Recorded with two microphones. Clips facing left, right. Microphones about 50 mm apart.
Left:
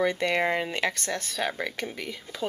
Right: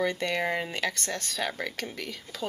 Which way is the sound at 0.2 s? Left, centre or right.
Centre.